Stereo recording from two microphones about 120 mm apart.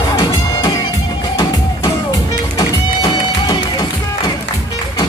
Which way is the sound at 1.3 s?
25° left (ahead or behind).